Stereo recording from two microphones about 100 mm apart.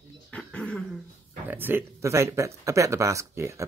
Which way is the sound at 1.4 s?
20° right (ahead or behind).